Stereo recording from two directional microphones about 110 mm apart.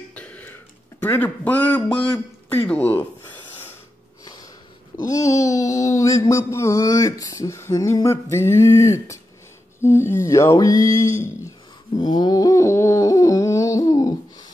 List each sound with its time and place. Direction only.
0.1 s throat clearing: 15° left (ahead or behind)
1.0 s a man's voice: 15° left (ahead or behind)
5.0 s mantra: 30° left (ahead or behind)
9.8 s speech: 25° left (ahead or behind)
11.9 s a sound: 40° left (ahead or behind)